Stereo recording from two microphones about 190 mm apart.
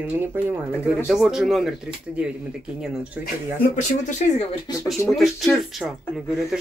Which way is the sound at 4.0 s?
40° left (ahead or behind).